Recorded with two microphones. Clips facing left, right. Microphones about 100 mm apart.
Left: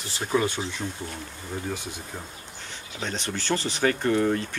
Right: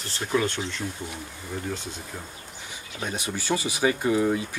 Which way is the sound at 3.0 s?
10° right (ahead or behind).